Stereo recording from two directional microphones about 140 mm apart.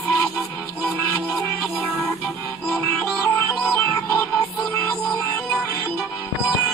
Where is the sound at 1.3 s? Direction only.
10° left (ahead or behind).